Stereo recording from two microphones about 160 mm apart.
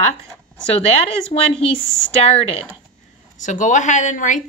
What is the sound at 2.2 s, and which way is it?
Speech, 40° left (ahead or behind).